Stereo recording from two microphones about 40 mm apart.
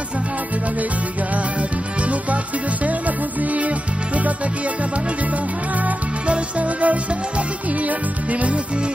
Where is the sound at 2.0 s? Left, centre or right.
Right.